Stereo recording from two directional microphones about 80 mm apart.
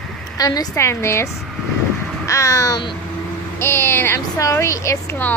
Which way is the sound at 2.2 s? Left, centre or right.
Left.